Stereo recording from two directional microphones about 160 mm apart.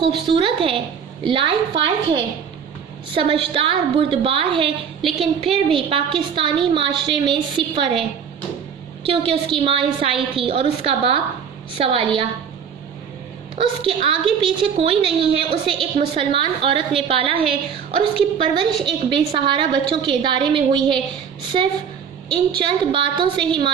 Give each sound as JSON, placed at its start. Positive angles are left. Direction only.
{"t": 0.3, "sound": "a woman's voice", "side_deg": -35}
{"t": 9.0, "sound": "a woman's voice", "side_deg": -35}
{"t": 13.6, "sound": "a woman's voice", "side_deg": -30}